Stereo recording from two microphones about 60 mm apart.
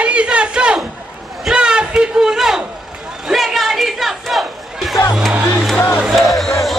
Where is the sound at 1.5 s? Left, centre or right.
Centre.